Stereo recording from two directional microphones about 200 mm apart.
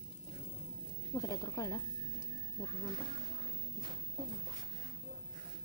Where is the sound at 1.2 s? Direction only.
15° left (ahead or behind).